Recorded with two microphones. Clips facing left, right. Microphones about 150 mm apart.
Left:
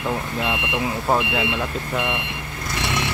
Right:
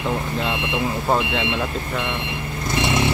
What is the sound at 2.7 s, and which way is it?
Vehicle, 20° right (ahead or behind).